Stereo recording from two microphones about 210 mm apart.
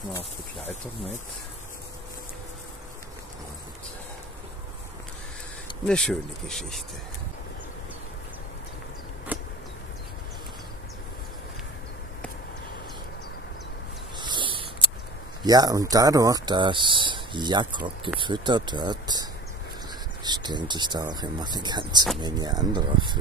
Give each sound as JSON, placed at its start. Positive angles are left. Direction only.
{"t": 5.9, "sound": "speech", "side_deg": 5}
{"t": 9.3, "sound": "insect", "side_deg": -5}
{"t": 14.1, "sound": "a sound", "side_deg": -20}
{"t": 15.4, "sound": "speech", "side_deg": -20}
{"t": 20.2, "sound": "speech", "side_deg": -20}